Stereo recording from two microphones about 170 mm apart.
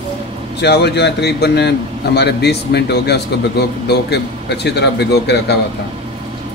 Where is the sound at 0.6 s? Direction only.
80° left.